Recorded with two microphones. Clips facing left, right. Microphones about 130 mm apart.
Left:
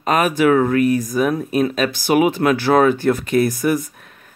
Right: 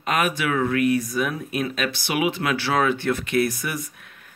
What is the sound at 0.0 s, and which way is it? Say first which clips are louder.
Speech: left 8 dB; 40° left (ahead or behind).